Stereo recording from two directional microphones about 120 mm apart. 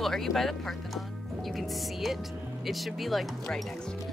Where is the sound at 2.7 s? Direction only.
Centre (ahead or behind).